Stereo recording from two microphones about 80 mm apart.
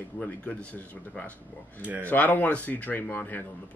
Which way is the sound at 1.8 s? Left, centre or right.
Right.